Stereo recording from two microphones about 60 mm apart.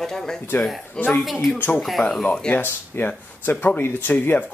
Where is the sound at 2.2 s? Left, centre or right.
Centre.